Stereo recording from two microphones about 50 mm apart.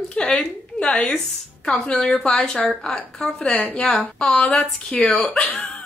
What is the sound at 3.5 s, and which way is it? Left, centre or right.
Speech, left.